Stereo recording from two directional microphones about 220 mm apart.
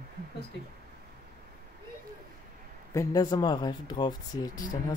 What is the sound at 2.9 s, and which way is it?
Speech, 15° left (ahead or behind).